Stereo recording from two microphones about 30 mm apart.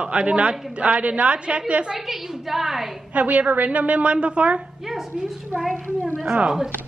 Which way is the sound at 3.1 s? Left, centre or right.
Right.